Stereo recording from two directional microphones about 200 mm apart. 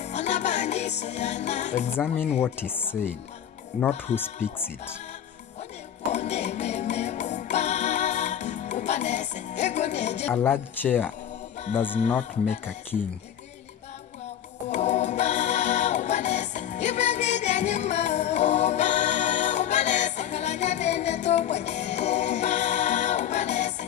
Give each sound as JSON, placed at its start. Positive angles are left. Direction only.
{"t": 0.0, "sound": "music", "side_deg": 35}
{"t": 2.6, "sound": "speech", "side_deg": 10}
{"t": 4.1, "sound": "speech", "side_deg": 35}
{"t": 6.1, "sound": "music", "side_deg": 35}
{"t": 10.3, "sound": "speech", "side_deg": 10}
{"t": 11.8, "sound": "speech", "side_deg": 25}
{"t": 12.1, "sound": "speech", "side_deg": 5}
{"t": 14.7, "sound": "music", "side_deg": 35}